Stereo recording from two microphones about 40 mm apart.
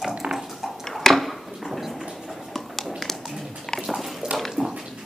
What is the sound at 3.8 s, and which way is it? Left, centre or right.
Dog, centre.